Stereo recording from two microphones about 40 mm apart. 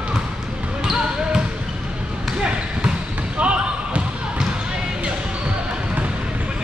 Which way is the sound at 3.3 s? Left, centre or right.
Right.